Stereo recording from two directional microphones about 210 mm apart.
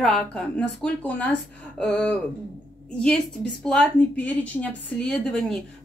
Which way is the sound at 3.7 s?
5° left (ahead or behind).